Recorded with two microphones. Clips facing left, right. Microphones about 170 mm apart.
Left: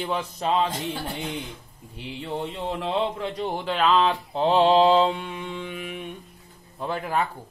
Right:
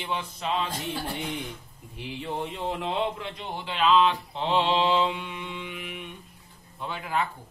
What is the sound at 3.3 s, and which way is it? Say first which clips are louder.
A man's voice: left 7 dB; 45° left (ahead or behind).